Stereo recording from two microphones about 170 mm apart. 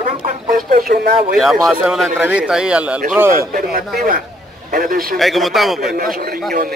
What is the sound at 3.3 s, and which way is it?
A man's voice, 55° right (ahead or behind).